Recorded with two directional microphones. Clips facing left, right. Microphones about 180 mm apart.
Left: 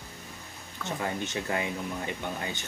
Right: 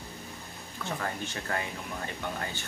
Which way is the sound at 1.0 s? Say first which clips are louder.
Left 3 dB; 15° left (ahead or behind).